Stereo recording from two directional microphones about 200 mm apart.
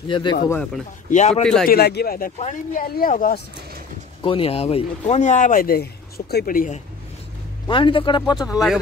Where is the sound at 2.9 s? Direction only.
45° left (ahead or behind).